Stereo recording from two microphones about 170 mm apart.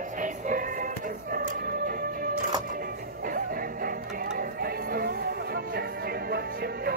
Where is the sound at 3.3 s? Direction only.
55° right (ahead or behind).